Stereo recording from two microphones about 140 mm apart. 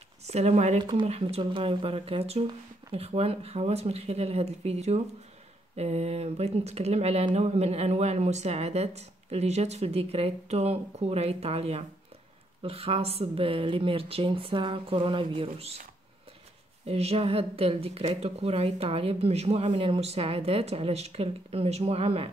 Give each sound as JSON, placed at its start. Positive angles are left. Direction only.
{"t": 0.3, "sound": "a woman's voice", "side_deg": -50}
{"t": 16.8, "sound": "a woman's voice", "side_deg": -45}